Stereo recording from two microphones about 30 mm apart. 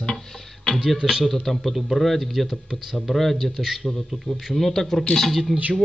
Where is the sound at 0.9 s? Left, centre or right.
Right.